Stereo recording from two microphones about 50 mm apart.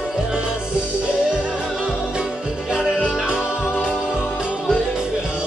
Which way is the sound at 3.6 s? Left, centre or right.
Left.